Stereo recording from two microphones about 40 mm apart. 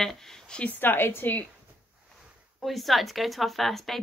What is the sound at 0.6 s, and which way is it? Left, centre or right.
Speech, left.